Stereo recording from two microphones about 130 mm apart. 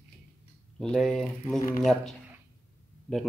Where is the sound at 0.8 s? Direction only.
5° left (ahead or behind).